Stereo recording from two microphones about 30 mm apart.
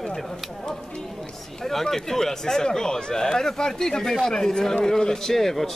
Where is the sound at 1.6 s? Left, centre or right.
Centre.